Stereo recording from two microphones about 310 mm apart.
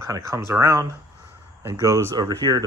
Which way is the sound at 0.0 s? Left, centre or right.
Centre.